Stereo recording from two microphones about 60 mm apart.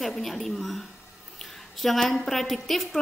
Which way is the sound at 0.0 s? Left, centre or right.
Centre.